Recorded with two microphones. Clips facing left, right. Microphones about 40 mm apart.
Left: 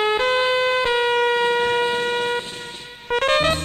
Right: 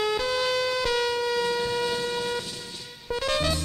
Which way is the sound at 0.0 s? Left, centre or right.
Left.